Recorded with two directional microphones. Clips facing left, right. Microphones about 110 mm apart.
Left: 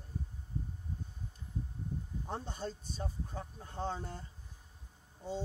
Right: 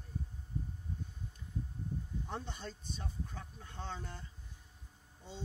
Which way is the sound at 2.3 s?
40° left (ahead or behind).